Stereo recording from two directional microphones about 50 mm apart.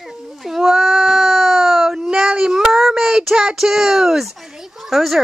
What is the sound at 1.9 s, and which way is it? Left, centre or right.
Speech, centre.